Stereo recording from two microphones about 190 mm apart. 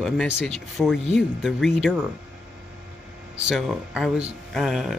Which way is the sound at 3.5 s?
5° right (ahead or behind).